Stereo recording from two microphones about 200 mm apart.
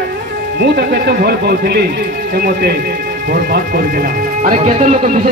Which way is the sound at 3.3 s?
50° right (ahead or behind).